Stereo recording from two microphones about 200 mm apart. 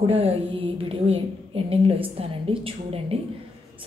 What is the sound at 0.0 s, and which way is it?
A woman's voice, 30° right (ahead or behind).